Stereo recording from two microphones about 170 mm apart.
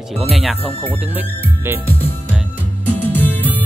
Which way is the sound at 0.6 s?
35° left (ahead or behind).